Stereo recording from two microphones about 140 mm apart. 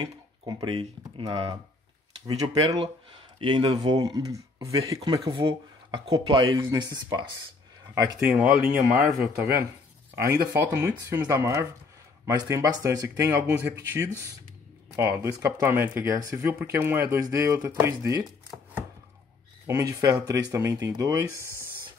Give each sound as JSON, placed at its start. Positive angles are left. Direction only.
{"t": 0.0, "sound": "speech", "side_deg": -30}
{"t": 5.3, "sound": "speech", "side_deg": -35}
{"t": 8.2, "sound": "speech", "side_deg": -10}
{"t": 10.3, "sound": "speech", "side_deg": -20}
{"t": 19.6, "sound": "speech", "side_deg": -20}
{"t": 21.4, "sound": "speech", "side_deg": 20}